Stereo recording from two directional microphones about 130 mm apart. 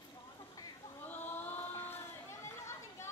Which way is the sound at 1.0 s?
15° left (ahead or behind).